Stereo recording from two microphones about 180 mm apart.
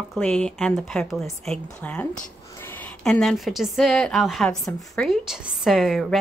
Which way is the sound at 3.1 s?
Centre (ahead or behind).